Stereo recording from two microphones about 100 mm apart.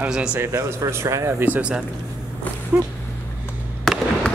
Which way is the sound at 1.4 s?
15° right (ahead or behind).